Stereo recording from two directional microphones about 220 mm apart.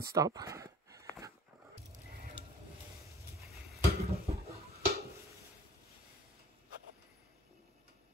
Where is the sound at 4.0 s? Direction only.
30° right (ahead or behind).